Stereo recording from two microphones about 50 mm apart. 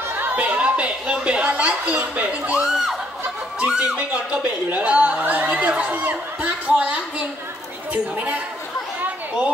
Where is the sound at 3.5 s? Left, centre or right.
Right.